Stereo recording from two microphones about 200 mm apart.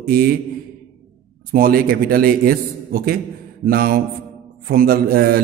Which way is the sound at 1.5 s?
50° right (ahead or behind).